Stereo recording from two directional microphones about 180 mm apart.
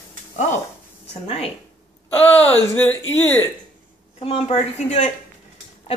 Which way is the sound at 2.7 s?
10° left (ahead or behind).